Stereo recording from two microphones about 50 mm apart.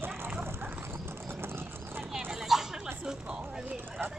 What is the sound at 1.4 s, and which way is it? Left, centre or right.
Clip-clop, right.